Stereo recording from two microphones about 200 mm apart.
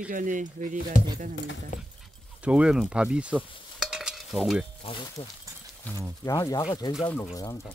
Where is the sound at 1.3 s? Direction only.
65° left (ahead or behind).